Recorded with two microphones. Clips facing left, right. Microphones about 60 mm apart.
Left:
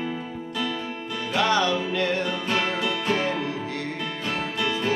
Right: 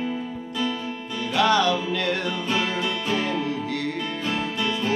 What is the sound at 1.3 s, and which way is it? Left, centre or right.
Music, left.